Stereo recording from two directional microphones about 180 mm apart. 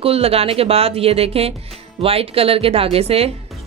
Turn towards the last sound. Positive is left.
turn(degrees=-35)  # may be behind; listen again after turning